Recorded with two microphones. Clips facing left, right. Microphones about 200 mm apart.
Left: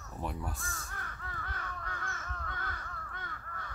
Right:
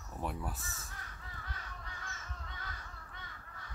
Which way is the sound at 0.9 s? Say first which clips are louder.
Left 6 dB; 55° left (ahead or behind).